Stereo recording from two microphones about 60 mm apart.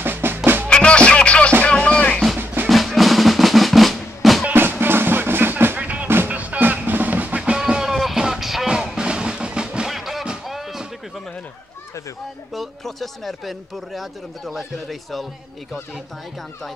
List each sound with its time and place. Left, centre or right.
0.0 s music: right
0.7 s music: centre
2.3 s drum: right
2.7 s drum: centre
4.6 s music: right
5.8 s music: right
6.0 s music: right
6.3 s music: right
7.9 s music: centre
9.8 s music: centre
10.5 s a sound: centre
12.5 s speech: centre